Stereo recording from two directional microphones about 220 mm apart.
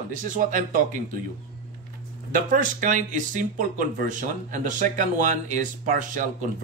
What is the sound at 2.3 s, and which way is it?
Speech, 35° right (ahead or behind).